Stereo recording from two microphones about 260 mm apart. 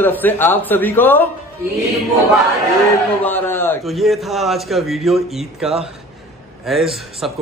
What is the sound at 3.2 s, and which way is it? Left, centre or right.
A man's voice, centre.